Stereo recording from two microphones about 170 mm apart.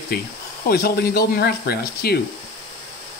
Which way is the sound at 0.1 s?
65° left (ahead or behind).